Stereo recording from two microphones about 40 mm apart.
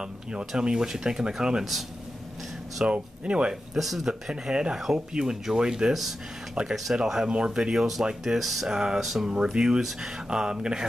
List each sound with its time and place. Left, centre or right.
0.0 s speech: right
1.6 s speech: centre
2.9 s speech: right
3.7 s speech: centre
4.1 s speech: centre
6.7 s speech: centre
7.2 s speech: right
8.3 s speech: centre
8.6 s speech: centre